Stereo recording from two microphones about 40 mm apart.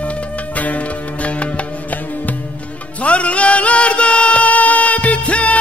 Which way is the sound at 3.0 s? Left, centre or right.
Left.